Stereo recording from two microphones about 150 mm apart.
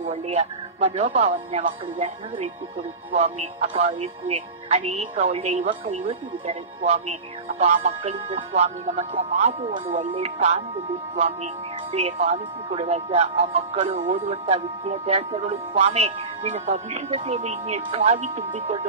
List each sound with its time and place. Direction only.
0.1 s speech: 45° right (ahead or behind)
11.9 s speech: 45° right (ahead or behind)
18.2 s speech: 60° right (ahead or behind)